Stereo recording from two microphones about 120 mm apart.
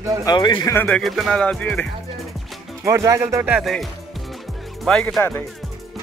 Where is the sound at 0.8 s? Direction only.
5° left (ahead or behind).